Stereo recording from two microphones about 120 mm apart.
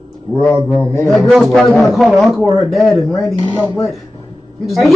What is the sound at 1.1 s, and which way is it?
A man's voice, centre (ahead or behind).